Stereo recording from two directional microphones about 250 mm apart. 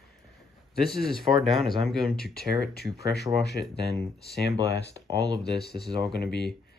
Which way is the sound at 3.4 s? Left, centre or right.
Left.